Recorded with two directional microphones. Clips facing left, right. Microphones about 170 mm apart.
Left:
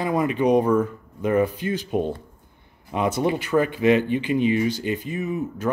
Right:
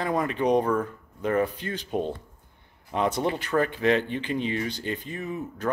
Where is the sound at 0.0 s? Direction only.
10° left (ahead or behind).